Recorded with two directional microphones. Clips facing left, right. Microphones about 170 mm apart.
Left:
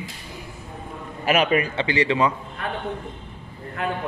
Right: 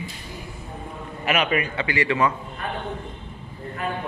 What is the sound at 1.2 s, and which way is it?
A man's voice, 35° left (ahead or behind).